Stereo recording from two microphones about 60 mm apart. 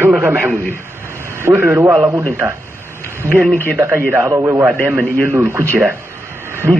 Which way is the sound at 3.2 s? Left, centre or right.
Right.